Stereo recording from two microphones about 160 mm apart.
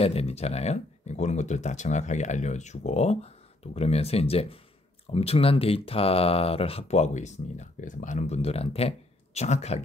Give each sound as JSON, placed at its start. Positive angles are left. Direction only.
{"t": 0.0, "sound": "speech", "side_deg": 40}